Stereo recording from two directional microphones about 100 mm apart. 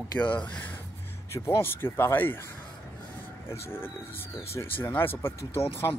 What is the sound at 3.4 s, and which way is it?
Speech, 25° left (ahead or behind).